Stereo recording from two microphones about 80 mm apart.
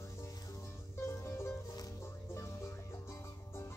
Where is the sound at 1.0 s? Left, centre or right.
Left.